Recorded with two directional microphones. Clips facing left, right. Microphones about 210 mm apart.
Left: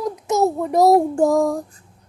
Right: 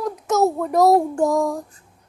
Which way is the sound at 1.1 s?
30° left (ahead or behind).